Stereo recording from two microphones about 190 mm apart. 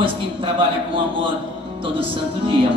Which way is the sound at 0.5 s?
25° right (ahead or behind).